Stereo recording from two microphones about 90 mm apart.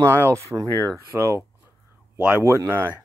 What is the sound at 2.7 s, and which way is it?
Speech, 20° right (ahead or behind).